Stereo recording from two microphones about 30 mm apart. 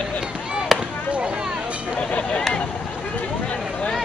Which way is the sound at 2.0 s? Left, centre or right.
Left.